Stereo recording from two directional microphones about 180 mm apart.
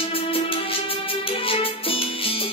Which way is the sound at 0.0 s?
30° left (ahead or behind).